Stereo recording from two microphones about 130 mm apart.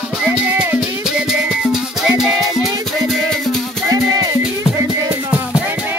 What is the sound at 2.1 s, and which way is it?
Music, 5° right (ahead or behind).